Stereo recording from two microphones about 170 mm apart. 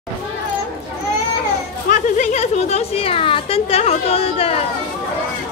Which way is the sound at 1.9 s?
45° left (ahead or behind).